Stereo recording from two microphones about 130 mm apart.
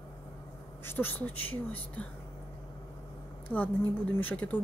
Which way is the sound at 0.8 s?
15° left (ahead or behind).